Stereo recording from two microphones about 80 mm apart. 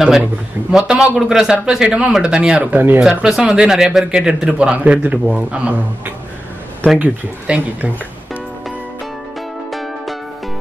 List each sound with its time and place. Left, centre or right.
0.7 s a man's voice: centre
3.0 s a man's voice: centre
9.7 s music: centre